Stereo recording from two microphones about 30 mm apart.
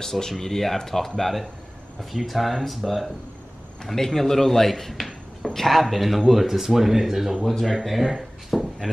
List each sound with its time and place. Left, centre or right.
0.0 s speech: centre
2.5 s speech: centre
3.8 s speech: centre
7.6 s speech: centre